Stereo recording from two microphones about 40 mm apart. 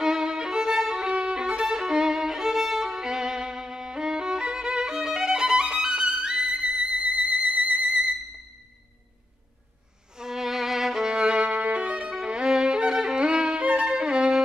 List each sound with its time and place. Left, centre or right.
0.0 s violin: centre
6.8 s music: right
7.8 s music: centre
10.1 s violin: centre; by 12.1 s right
12.1 s violin: right